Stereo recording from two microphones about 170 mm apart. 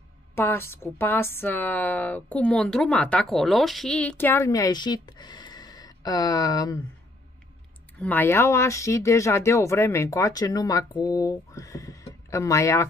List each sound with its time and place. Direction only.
0.4 s a woman's voice: 15° left (ahead or behind)
8.0 s a woman's voice: 10° left (ahead or behind)